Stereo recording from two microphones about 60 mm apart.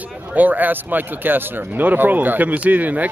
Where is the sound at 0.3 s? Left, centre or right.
Right.